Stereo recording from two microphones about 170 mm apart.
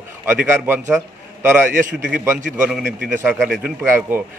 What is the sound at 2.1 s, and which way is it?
Speech, 15° right (ahead or behind).